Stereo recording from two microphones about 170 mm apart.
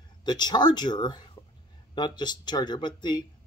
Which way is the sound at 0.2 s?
25° left (ahead or behind).